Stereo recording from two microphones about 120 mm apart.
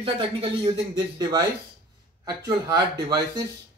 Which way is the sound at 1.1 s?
35° right (ahead or behind).